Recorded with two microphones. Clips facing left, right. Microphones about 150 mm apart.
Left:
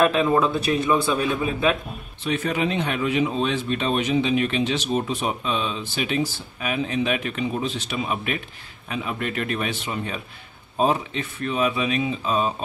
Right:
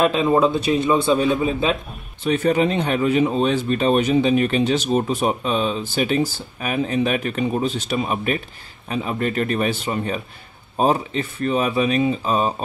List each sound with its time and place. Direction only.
0.0 s a man's voice: 25° right (ahead or behind)
2.2 s a man's voice: 40° right (ahead or behind)